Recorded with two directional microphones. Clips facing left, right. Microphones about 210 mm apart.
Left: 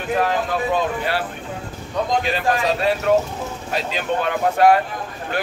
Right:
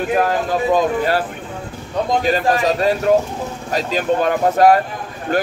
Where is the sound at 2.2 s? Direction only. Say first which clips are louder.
Right 4 dB; 40° right (ahead or behind).